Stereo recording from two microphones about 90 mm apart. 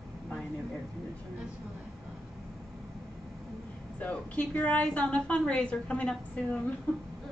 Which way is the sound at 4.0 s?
15° left (ahead or behind).